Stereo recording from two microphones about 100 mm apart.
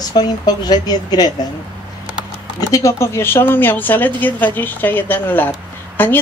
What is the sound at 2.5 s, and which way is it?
Speech, 35° left (ahead or behind).